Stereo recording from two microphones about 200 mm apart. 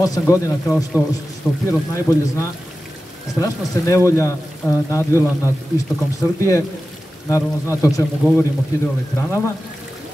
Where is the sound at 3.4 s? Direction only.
15° left (ahead or behind).